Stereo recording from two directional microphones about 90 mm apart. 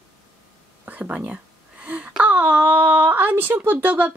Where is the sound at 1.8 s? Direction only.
15° right (ahead or behind).